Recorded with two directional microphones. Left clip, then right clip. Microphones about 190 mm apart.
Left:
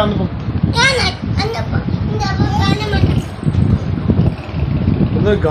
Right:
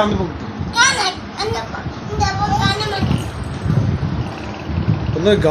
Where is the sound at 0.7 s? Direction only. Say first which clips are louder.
Left 1 dB; 40° left (ahead or behind).